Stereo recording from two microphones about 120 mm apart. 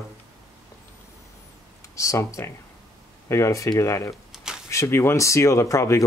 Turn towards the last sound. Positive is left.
turn(degrees=25)  # may be behind; listen again after turning